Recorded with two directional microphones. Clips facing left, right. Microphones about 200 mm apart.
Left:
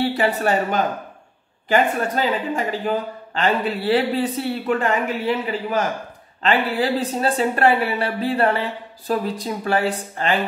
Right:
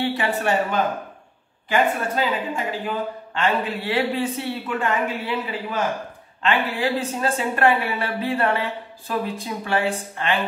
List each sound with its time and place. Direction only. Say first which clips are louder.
0.2 s speech: left 2 dB; 35° left (ahead or behind)